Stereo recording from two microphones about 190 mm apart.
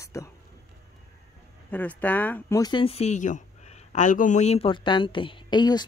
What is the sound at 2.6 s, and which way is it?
Speech, 25° left (ahead or behind).